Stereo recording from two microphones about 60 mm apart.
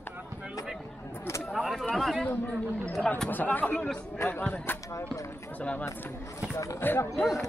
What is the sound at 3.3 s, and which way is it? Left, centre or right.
Speech, left.